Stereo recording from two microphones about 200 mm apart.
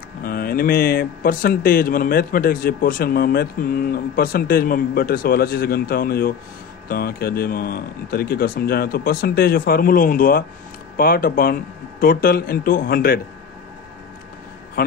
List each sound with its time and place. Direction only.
0.2 s speech: 45° left (ahead or behind)